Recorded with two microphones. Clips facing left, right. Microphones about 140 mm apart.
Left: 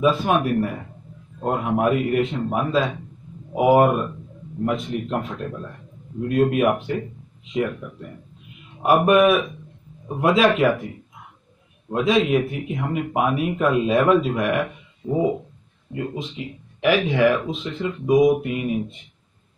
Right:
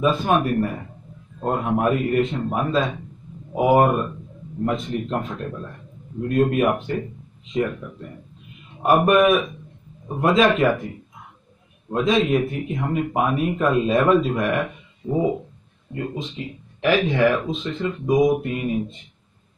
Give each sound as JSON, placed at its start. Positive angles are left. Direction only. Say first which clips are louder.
{"t": 0.0, "sound": "speech", "louder": "even", "side_deg": 5}
{"t": 6.2, "sound": "speech", "louder": "even", "side_deg": 5}
{"t": 8.8, "sound": "speech", "louder": "even", "side_deg": 5}
{"t": 11.9, "sound": "speech", "louder": "even", "side_deg": 5}
{"t": 15.0, "sound": "a sound", "louder": "even", "side_deg": 25}
{"t": 15.9, "sound": "speech", "louder": "even", "side_deg": 10}